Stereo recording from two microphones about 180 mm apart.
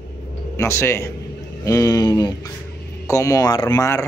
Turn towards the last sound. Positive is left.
turn(degrees=15)  # may be behind; listen again after turning